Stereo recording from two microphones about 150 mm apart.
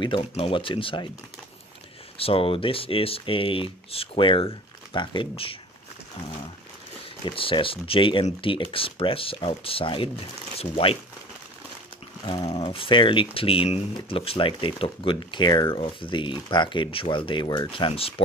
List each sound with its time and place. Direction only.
0.0 s speech: 35° left (ahead or behind)
2.1 s speech: 40° left (ahead or behind)
7.2 s speech: 35° left (ahead or behind)
12.5 s speech: 35° left (ahead or behind)